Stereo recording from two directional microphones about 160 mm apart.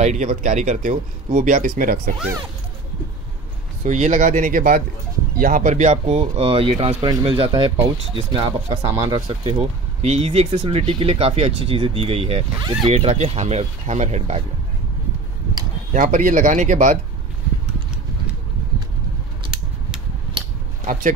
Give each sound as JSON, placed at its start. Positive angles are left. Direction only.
{"t": 0.0, "sound": "speech", "side_deg": -45}
{"t": 3.8, "sound": "speech", "side_deg": -50}
{"t": 15.9, "sound": "speech", "side_deg": -55}
{"t": 20.4, "sound": "a sound", "side_deg": -30}
{"t": 20.8, "sound": "speech", "side_deg": -55}